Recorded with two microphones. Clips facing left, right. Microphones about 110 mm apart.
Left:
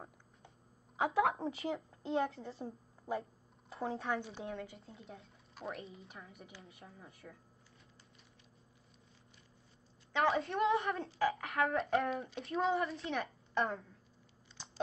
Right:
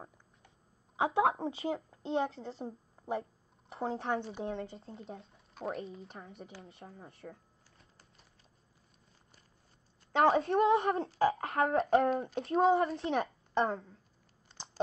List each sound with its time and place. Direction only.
1.0 s a woman's voice: 30° right (ahead or behind)
10.1 s speech: 30° right (ahead or behind)